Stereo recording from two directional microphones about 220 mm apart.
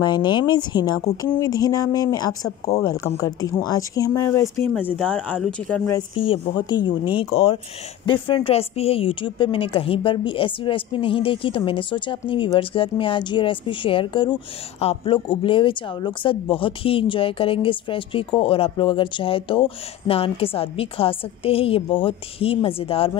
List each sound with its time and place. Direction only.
0.0 s speech: 20° left (ahead or behind); by 5.9 s 5° left (ahead or behind)
5.9 s speech: 25° left (ahead or behind)